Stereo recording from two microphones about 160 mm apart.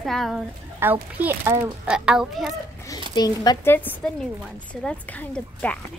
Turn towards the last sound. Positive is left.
turn(degrees=10)  # may be behind; listen again after turning